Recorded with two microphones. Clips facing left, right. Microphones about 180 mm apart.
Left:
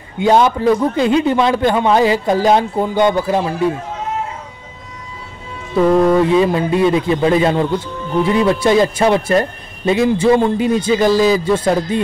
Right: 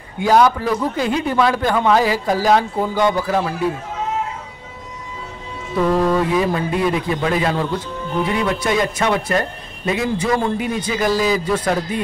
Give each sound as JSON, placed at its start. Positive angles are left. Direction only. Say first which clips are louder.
{"t": 0.2, "sound": "speech", "louder": "left 2 dB", "side_deg": 25}
{"t": 5.9, "sound": "speech", "louder": "left 6 dB", "side_deg": 25}